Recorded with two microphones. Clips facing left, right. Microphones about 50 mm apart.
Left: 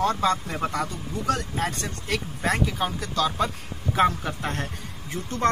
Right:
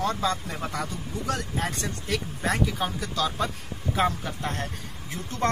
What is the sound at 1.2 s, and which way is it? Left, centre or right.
Speech, centre.